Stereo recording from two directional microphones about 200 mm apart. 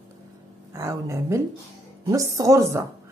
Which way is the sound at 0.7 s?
15° right (ahead or behind).